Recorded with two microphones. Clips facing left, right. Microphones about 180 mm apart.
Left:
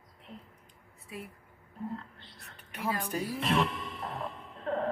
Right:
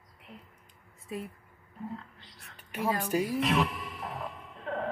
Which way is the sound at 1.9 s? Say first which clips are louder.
Left 1 dB; centre (ahead or behind).